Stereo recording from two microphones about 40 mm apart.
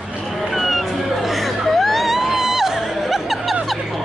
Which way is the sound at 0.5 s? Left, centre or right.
Centre.